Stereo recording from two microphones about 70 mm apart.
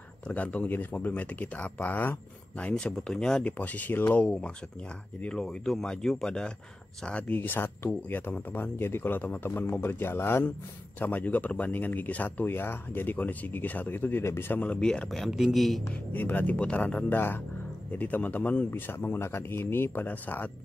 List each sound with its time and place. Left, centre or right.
0.3 s speech: left
2.7 s speech: centre
3.5 s speech: left
5.4 s speech: centre
7.3 s speech: left
14.6 s speech: centre
16.1 s speech: left
18.7 s speech: left